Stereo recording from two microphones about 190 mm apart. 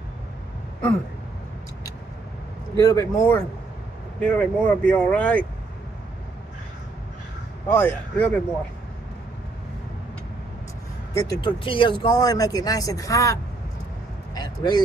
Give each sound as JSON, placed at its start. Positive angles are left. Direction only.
{"t": 2.7, "sound": "speech", "side_deg": 20}
{"t": 7.7, "sound": "speech", "side_deg": 10}
{"t": 11.1, "sound": "speech", "side_deg": 20}
{"t": 14.3, "sound": "vehicle", "side_deg": 20}